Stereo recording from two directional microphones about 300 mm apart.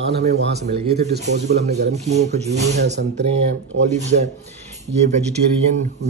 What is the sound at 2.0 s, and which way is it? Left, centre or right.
Speech, right.